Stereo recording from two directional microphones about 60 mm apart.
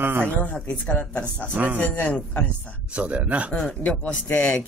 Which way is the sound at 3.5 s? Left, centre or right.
Centre.